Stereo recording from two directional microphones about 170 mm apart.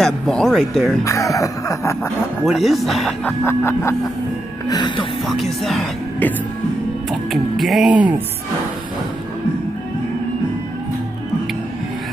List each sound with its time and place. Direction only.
0.0 s speech: 5° left (ahead or behind)
1.0 s a sound: 20° left (ahead or behind)
2.4 s speech: centre (ahead or behind)
3.4 s music: 15° left (ahead or behind)
4.6 s a sound: 25° left (ahead or behind)
5.2 s speech: centre (ahead or behind)